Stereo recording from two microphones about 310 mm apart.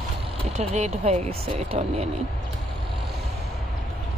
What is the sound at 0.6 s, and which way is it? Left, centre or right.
Speech, right.